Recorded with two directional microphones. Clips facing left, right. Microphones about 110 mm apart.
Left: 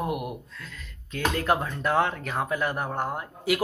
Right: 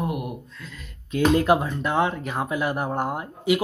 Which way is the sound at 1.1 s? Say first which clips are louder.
Right 6 dB; 15° right (ahead or behind).